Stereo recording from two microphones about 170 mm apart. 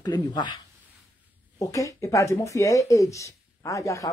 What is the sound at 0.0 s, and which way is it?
Speech, 25° left (ahead or behind).